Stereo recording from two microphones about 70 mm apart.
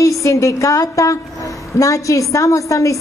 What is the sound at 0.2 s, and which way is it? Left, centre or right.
A woman's voice, left.